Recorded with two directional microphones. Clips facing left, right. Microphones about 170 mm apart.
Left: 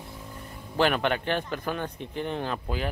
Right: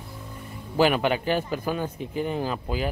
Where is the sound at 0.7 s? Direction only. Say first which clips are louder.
Right 3 dB; 5° right (ahead or behind).